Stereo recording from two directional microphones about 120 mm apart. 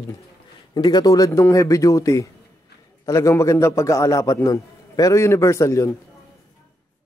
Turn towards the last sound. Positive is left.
turn(degrees=25)  # may be behind; listen again after turning